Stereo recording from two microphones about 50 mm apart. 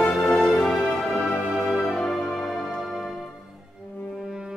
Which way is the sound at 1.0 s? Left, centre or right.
Centre.